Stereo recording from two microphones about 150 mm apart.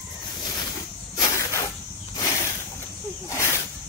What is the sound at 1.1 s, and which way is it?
Snake, 20° left (ahead or behind).